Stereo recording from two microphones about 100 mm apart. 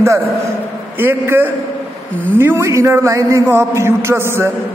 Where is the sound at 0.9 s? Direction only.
25° right (ahead or behind).